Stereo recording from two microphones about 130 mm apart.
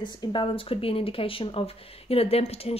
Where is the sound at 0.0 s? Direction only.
35° left (ahead or behind).